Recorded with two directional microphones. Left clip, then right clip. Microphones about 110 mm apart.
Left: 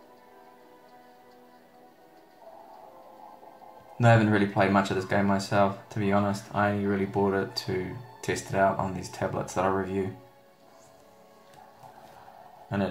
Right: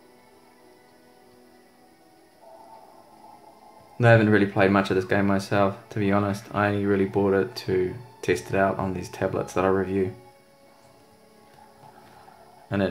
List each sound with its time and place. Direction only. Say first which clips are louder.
4.0 s speech: right 4 dB; 50° right (ahead or behind)